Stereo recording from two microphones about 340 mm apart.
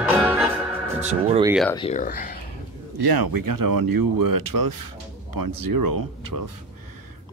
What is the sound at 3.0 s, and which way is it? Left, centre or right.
Speech, right.